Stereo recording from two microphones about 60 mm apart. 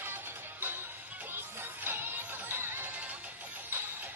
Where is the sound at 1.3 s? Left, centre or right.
Right.